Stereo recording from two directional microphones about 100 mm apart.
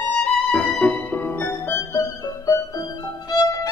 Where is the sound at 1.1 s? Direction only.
20° left (ahead or behind).